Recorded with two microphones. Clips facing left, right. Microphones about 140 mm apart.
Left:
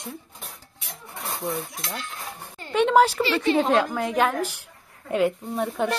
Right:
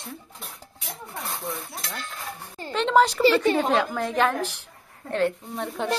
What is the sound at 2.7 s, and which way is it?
Speech, 10° left (ahead or behind).